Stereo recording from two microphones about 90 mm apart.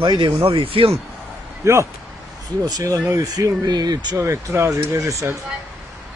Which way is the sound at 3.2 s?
45° right (ahead or behind).